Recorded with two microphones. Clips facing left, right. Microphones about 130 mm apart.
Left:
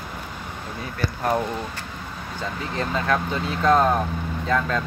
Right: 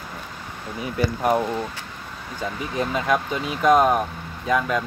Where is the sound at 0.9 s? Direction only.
10° right (ahead or behind).